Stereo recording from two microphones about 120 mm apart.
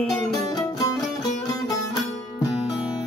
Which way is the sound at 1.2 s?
30° left (ahead or behind).